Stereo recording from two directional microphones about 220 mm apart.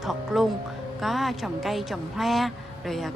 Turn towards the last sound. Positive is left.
turn(degrees=0)  # may be behind; listen again after turning